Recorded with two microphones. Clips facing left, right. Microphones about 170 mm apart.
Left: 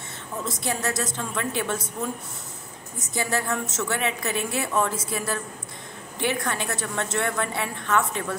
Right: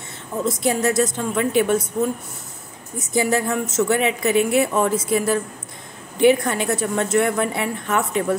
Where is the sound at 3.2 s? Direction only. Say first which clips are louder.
Right 7 dB; 15° right (ahead or behind).